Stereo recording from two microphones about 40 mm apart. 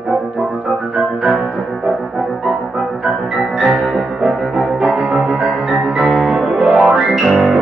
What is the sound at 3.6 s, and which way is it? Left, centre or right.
Music, centre.